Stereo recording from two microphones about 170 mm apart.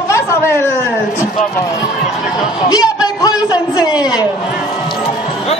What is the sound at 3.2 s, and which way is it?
A man's voice, 20° left (ahead or behind).